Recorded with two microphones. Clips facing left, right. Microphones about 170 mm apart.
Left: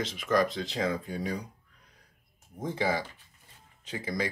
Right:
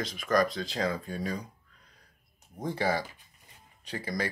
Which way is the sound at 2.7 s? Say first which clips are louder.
Even; 15° left (ahead or behind).